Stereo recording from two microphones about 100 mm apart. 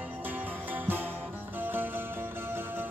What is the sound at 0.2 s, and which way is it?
Music, 20° right (ahead or behind).